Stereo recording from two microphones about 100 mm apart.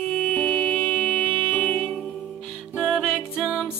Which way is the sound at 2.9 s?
Centre (ahead or behind).